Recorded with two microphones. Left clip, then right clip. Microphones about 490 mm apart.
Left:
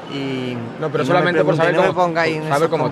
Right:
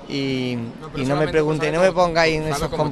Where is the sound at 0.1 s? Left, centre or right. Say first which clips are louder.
Right 1 dB; right.